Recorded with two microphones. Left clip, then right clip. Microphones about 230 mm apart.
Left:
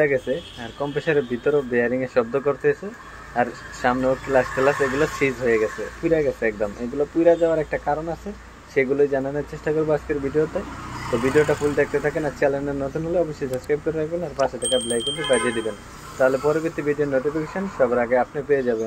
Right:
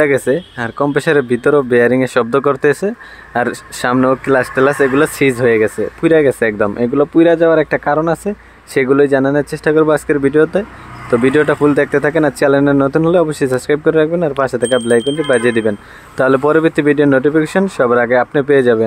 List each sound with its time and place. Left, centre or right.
0.0 s speech: right
14.6 s speech: centre
15.3 s speech: right